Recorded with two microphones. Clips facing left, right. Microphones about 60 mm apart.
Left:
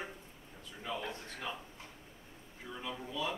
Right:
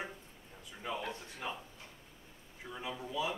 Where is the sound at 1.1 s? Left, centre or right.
Centre.